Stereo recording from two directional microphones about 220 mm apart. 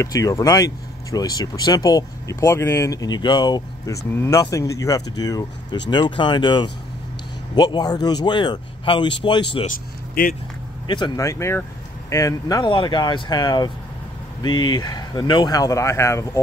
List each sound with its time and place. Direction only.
0.0 s speech: 15° left (ahead or behind)
9.7 s speech: 40° left (ahead or behind)
10.9 s speech: 15° left (ahead or behind)